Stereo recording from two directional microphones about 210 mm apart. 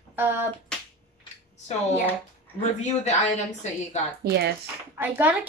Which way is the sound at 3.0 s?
35° left (ahead or behind).